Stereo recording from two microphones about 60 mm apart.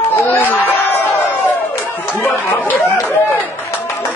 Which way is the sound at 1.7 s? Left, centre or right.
Left.